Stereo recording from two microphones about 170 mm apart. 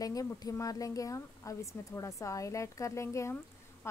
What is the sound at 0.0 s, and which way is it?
Speech, 20° left (ahead or behind).